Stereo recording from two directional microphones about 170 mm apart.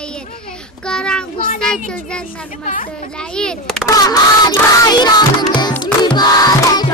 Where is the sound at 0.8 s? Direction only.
5° left (ahead or behind).